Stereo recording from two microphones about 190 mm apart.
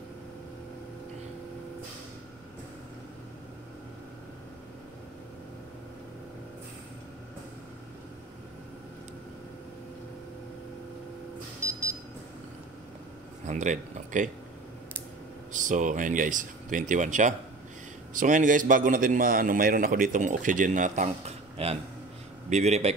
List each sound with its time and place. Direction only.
11.6 s a sound: 15° right (ahead or behind)
13.5 s speech: 40° right (ahead or behind)
15.5 s a man's voice: 40° right (ahead or behind)